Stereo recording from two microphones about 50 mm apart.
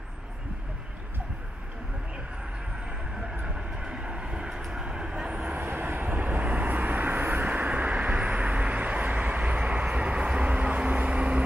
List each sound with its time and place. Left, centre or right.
3.4 s vehicle: right
5.4 s vehicle: right